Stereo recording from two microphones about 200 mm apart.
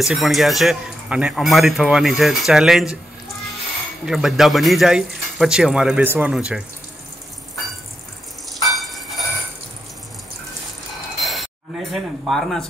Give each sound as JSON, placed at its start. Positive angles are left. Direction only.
{"t": 0.0, "sound": "a man's voice", "side_deg": 0}
{"t": 4.0, "sound": "a man's voice", "side_deg": 0}
{"t": 8.6, "sound": "a sound", "side_deg": 0}
{"t": 11.1, "sound": "chink", "side_deg": 0}
{"t": 11.9, "sound": "a man's voice", "side_deg": 0}